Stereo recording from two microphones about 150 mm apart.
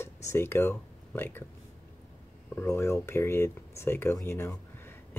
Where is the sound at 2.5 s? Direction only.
15° left (ahead or behind).